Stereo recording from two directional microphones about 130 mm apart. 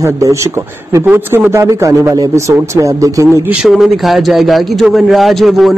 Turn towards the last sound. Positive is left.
turn(degrees=0)  # may be behind; listen again after turning